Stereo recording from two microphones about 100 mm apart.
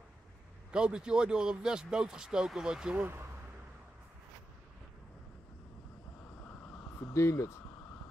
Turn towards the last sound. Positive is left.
turn(degrees=25)  # may be behind; listen again after turning